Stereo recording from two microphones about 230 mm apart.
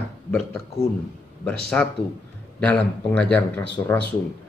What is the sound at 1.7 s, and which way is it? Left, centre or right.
Speech, centre.